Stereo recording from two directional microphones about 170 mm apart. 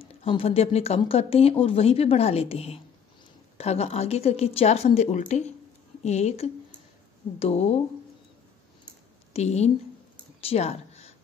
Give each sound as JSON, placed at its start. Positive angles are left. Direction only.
{"t": 0.0, "sound": "speech", "side_deg": 35}
{"t": 9.3, "sound": "a woman's voice", "side_deg": 40}
{"t": 10.4, "sound": "a sound", "side_deg": 35}